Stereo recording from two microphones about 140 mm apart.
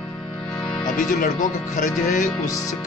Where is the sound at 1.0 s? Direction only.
70° left (ahead or behind).